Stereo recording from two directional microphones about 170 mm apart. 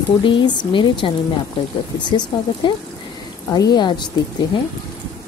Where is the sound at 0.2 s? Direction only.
30° left (ahead or behind).